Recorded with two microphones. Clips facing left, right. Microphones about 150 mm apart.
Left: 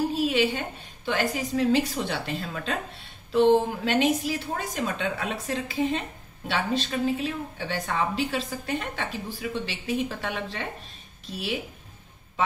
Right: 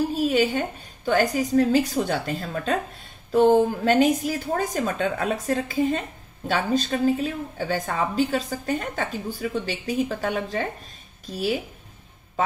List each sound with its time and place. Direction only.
0.1 s a woman's voice: 40° right (ahead or behind)